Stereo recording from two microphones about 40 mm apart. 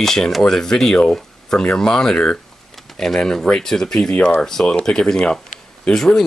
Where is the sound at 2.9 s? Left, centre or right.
Centre.